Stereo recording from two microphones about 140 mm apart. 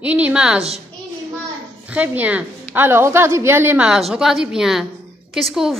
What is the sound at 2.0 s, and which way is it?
A woman's voice, 10° right (ahead or behind).